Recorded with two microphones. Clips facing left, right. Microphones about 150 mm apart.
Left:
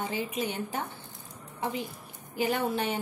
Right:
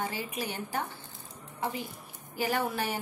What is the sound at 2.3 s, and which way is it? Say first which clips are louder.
Speech: left 2 dB; 20° left (ahead or behind).